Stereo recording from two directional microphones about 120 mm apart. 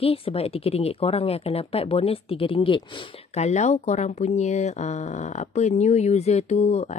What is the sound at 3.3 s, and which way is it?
Speech, 70° left (ahead or behind).